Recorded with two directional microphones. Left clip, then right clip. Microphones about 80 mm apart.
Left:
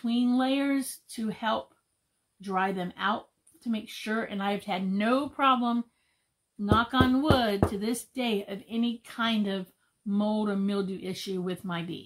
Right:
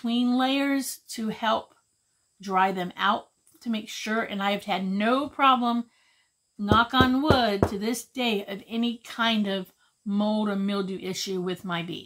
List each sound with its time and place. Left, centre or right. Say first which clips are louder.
0.0 s speech: right 2 dB; right